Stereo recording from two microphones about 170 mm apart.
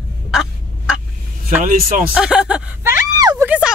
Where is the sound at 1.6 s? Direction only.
55° right (ahead or behind).